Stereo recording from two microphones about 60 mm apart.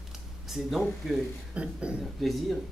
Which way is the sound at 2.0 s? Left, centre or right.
Centre.